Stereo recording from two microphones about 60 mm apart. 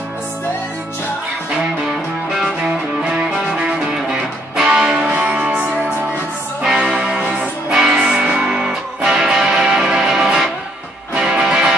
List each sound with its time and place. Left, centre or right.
2.3 s music: centre